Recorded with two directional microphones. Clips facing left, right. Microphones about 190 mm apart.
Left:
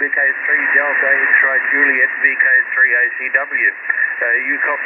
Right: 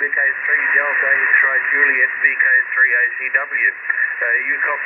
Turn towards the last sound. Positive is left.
turn(degrees=30)  # may be behind; listen again after turning